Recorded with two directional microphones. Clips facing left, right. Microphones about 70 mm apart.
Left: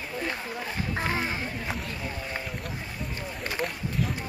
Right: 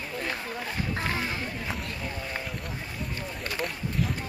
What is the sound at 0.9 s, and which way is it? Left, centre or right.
Speech, left.